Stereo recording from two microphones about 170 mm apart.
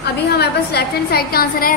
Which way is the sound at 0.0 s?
70° left (ahead or behind).